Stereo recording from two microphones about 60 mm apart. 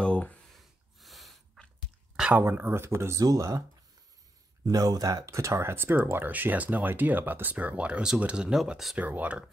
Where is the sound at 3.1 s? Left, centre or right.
Right.